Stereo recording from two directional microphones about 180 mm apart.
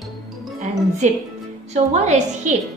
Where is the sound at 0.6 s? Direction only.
40° right (ahead or behind).